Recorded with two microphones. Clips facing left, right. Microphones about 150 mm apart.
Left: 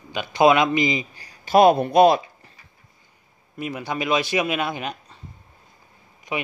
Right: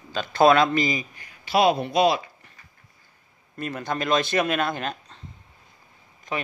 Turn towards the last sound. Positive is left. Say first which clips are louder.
# left 2 dB
turn(degrees=10)  # may be behind; listen again after turning